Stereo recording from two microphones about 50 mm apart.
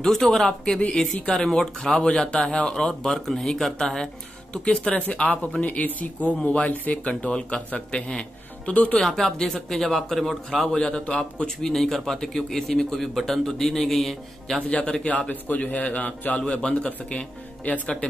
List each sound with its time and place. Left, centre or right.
0.0 s a man's voice: centre
4.6 s a man's voice: left
6.7 s speech: left
7.2 s a man's voice: left
9.0 s speech: centre
10.9 s a man's voice: left
11.7 s a man's voice: centre
14.7 s a man's voice: left
15.2 s a man's voice: left